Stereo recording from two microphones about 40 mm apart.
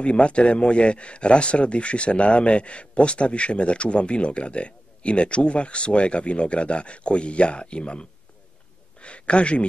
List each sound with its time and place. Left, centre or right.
0.0 s speech: left